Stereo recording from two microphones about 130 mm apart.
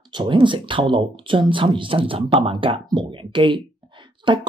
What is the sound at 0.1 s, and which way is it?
Speech, 40° right (ahead or behind).